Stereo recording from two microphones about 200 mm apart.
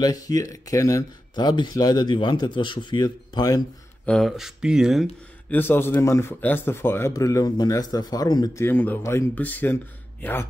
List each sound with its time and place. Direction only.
0.0 s speech: 20° left (ahead or behind)
4.0 s speech: 5° left (ahead or behind)
5.5 s speech: 10° left (ahead or behind)